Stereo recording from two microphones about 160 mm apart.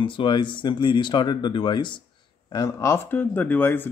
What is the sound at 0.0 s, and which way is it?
Speech, 30° left (ahead or behind).